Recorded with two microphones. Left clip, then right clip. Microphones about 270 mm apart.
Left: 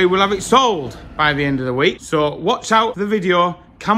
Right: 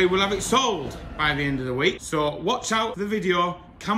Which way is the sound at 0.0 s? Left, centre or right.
Centre.